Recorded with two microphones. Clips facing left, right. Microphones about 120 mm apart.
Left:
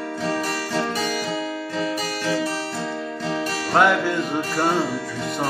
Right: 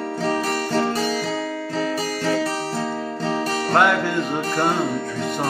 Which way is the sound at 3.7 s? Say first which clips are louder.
Left 1 dB; centre (ahead or behind).